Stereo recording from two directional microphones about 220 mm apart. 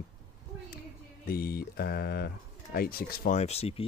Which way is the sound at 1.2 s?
45° left (ahead or behind).